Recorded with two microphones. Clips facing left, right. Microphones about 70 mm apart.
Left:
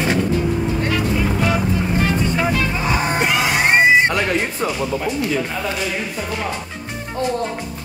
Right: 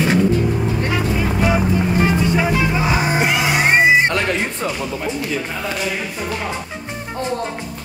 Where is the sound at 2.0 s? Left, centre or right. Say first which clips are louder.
Right 2 dB; centre.